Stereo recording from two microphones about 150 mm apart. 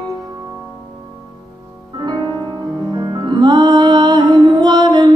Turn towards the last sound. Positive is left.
turn(degrees=-30)  # may be behind; listen again after turning